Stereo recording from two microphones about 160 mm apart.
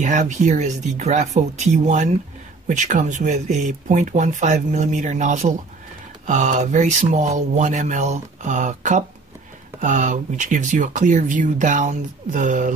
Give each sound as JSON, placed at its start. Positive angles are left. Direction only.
{"t": 0.0, "sound": "speech", "side_deg": -50}